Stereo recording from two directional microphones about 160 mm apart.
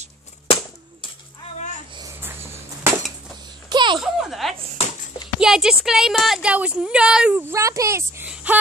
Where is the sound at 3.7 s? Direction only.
30° right (ahead or behind).